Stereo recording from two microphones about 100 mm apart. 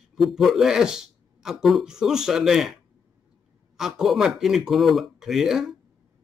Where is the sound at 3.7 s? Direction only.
5° right (ahead or behind).